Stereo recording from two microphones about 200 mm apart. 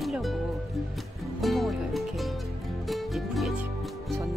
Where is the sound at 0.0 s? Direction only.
Centre (ahead or behind).